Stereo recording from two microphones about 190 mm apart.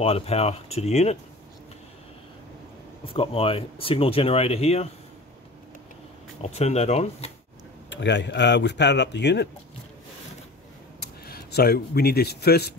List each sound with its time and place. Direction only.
0.0 s speech: 30° left (ahead or behind)
3.1 s speech: 30° left (ahead or behind)
6.4 s speech: 35° left (ahead or behind)
7.9 s speech: 65° left (ahead or behind)
11.0 s speech: 55° left (ahead or behind)